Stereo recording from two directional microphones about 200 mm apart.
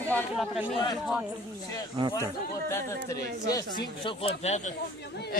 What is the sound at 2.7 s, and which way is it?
Speech, 15° left (ahead or behind).